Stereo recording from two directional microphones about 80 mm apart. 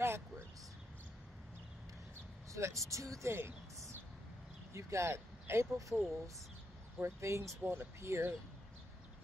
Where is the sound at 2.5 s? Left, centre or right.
Right.